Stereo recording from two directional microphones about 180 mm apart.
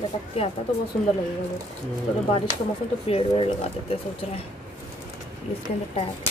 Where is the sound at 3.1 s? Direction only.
30° left (ahead or behind).